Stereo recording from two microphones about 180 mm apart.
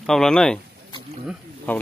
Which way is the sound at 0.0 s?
5° left (ahead or behind).